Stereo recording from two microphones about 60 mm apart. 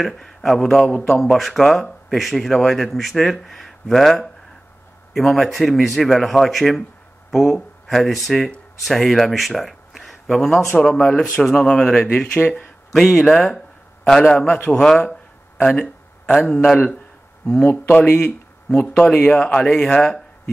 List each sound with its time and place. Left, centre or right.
0.0 s speech: centre
12.9 s speech: centre